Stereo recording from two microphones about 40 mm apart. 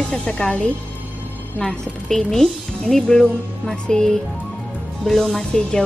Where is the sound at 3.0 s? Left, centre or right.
Centre.